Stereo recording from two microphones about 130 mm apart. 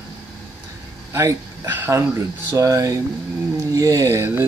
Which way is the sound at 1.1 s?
20° right (ahead or behind).